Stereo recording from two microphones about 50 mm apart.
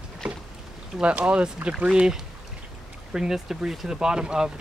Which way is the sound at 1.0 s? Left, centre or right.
Right.